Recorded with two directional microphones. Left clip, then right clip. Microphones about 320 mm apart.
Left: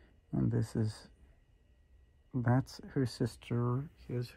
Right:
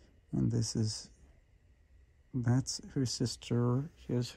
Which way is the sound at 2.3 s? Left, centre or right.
Centre.